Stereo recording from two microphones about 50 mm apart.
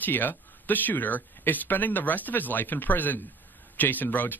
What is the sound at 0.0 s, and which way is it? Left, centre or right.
Speech, left.